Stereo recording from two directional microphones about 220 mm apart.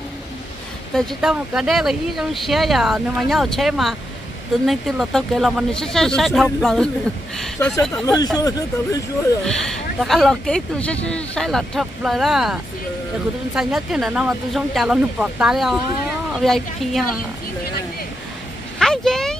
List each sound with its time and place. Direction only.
0.9 s speech: 5° right (ahead or behind)
8.0 s speech: 15° left (ahead or behind)
9.5 s speech: centre (ahead or behind)
13.6 s speech: 5° right (ahead or behind)
18.8 s a sound: centre (ahead or behind)